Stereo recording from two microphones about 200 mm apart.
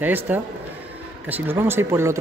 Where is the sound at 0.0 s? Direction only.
10° right (ahead or behind).